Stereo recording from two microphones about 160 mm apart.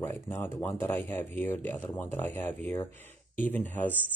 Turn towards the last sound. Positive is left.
turn(degrees=10)  # may be behind; listen again after turning